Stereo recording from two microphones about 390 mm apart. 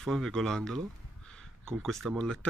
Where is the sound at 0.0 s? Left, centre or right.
Centre.